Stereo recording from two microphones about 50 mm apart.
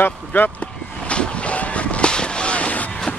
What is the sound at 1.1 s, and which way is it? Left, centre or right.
Vehicle, left.